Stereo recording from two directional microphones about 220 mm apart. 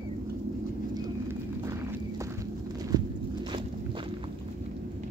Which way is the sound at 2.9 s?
20° right (ahead or behind).